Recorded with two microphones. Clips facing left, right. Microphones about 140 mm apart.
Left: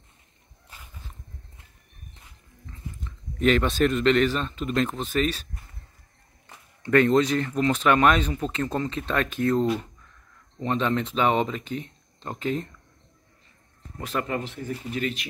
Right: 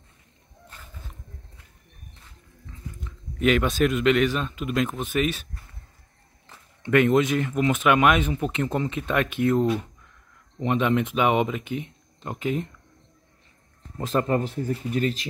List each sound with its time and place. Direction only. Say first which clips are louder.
3.0 s speech: even; 5° right (ahead or behind)
5.0 s speech: even; 15° right (ahead or behind)
6.8 s speech: even; 10° right (ahead or behind)
13.9 s speech: right 5 dB; 35° right (ahead or behind)